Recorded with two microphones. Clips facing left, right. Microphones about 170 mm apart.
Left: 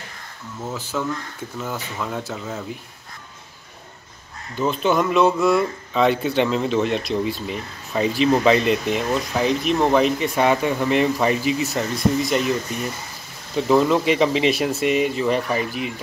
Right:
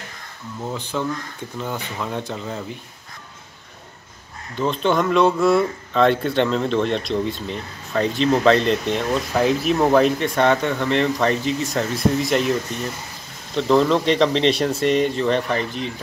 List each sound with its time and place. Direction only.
0.9 s speech: centre (ahead or behind)
4.6 s speech: 5° left (ahead or behind)